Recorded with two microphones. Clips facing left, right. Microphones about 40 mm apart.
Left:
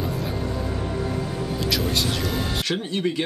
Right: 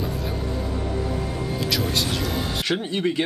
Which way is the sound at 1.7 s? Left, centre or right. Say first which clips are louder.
Left 1 dB; centre.